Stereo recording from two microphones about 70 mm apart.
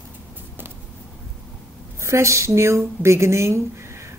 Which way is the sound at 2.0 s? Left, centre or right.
Right.